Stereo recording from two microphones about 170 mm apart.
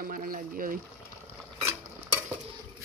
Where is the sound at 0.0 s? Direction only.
55° right (ahead or behind).